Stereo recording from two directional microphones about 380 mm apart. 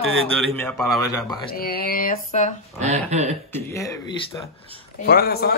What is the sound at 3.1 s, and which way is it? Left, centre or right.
Speech, centre.